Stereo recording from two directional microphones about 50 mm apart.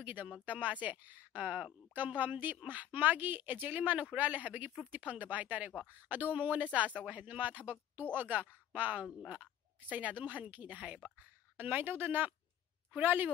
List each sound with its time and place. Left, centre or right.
0.0 s speech: right
1.4 s speech: right
2.0 s speech: right
11.5 s speech: right